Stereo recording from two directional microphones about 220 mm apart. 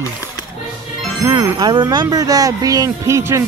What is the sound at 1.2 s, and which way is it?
Speech, 15° right (ahead or behind).